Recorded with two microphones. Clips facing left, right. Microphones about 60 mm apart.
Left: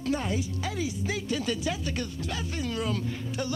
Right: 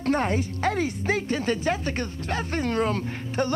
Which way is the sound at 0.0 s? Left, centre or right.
Right.